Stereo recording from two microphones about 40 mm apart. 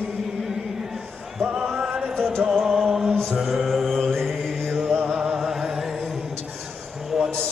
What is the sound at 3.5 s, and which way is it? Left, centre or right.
Mantra, centre.